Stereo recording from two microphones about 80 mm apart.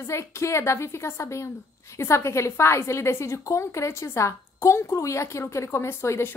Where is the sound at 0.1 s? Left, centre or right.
Left.